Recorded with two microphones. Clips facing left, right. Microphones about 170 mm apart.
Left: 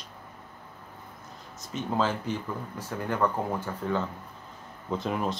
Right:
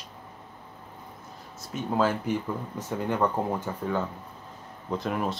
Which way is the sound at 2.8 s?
20° right (ahead or behind).